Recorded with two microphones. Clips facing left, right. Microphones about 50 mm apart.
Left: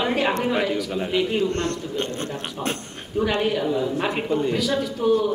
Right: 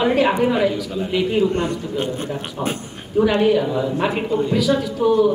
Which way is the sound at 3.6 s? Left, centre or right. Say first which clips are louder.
Right 2 dB; centre.